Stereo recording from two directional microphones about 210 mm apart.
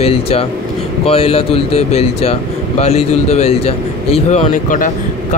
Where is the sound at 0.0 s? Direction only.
30° left (ahead or behind).